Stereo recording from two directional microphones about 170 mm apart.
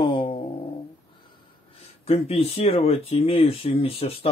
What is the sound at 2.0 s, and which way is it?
Speech, 35° left (ahead or behind).